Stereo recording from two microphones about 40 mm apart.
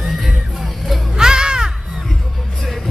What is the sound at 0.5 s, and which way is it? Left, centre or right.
Music, centre.